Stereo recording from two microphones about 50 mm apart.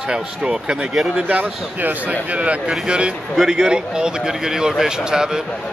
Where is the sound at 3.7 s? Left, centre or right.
Centre.